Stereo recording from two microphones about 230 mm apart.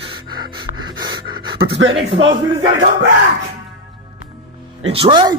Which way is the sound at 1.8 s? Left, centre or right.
Right.